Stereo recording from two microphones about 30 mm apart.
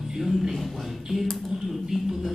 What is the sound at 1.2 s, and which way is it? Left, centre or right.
Speech, centre.